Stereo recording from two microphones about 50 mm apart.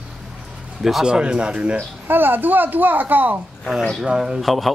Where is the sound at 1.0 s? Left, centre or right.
Centre.